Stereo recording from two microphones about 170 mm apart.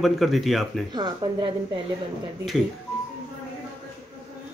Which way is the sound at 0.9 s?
25° right (ahead or behind).